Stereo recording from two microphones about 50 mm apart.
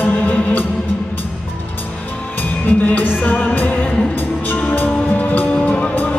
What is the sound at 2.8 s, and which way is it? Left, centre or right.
Music, left.